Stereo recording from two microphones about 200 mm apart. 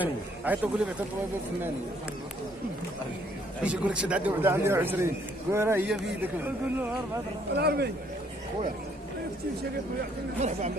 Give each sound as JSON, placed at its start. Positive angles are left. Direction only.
{"t": 0.0, "sound": "a sound", "side_deg": -5}
{"t": 3.6, "sound": "a man's voice", "side_deg": -5}
{"t": 7.5, "sound": "a man's voice", "side_deg": -55}